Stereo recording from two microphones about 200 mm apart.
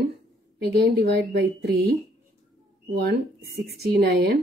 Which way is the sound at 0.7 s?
55° right (ahead or behind).